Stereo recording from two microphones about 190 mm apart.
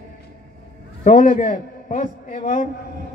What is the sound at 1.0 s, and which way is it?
A man's voice, 40° left (ahead or behind).